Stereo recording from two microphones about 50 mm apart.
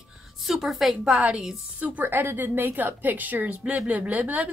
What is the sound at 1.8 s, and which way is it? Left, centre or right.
A woman's voice, right.